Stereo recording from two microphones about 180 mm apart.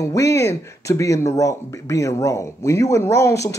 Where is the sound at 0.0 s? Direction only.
15° left (ahead or behind).